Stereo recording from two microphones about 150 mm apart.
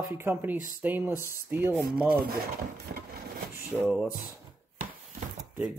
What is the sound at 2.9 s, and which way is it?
Wood, 75° right (ahead or behind).